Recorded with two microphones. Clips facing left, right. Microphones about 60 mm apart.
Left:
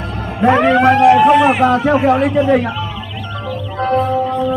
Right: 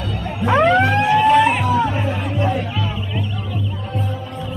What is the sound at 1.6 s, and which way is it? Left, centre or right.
Speech, left.